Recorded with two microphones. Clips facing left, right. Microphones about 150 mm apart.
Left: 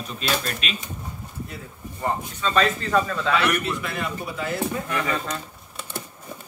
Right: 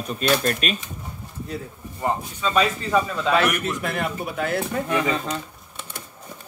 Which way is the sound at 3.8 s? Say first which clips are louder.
Right 3 dB; 55° right (ahead or behind).